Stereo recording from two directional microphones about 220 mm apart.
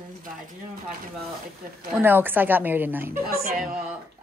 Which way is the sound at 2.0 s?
10° right (ahead or behind).